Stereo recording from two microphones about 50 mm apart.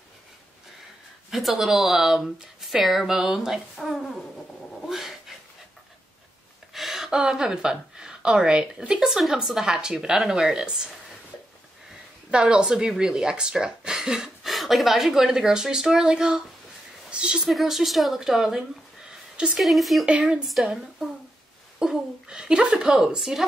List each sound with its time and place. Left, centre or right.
1.3 s speech: centre
6.7 s speech: centre
12.3 s speech: centre
17.4 s speech: centre
19.6 s speech: centre
20.1 s speech: right
21.7 s speech: centre